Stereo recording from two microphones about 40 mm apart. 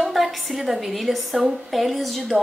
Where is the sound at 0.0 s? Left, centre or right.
Centre.